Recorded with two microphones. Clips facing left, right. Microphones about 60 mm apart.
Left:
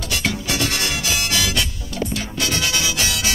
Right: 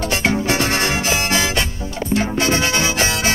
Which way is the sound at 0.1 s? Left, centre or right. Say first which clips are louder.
Right 4 dB; right.